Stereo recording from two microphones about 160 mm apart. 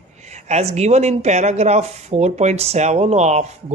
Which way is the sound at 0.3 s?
45° right (ahead or behind).